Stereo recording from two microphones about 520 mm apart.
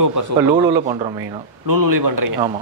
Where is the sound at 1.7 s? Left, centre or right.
Right.